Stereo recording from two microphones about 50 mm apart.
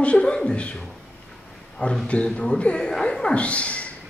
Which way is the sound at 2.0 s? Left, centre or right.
Left.